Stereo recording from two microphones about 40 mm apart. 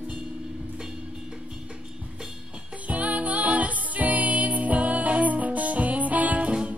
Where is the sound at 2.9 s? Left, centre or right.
Right.